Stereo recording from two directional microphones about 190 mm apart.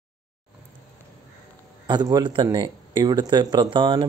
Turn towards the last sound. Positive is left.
turn(degrees=-25)  # may be behind; listen again after turning